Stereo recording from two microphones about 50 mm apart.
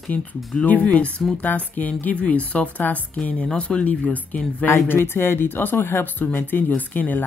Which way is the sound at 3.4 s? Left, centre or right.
Centre.